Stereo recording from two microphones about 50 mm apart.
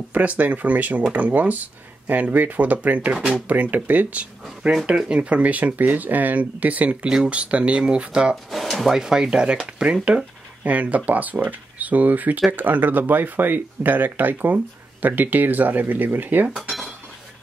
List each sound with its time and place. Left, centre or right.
0.1 s speech: right
8.5 s speech: centre
8.9 s speech: centre
10.6 s speech: right
16.5 s cutlery: centre